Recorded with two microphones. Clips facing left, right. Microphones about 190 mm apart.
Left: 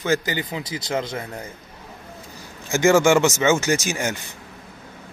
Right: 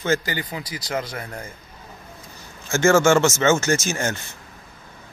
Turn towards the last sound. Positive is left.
turn(degrees=15)  # may be behind; listen again after turning